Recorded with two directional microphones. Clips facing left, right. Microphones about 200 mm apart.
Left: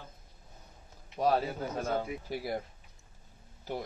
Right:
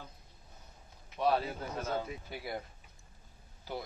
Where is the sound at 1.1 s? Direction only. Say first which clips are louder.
Left 2 dB; 40° left (ahead or behind).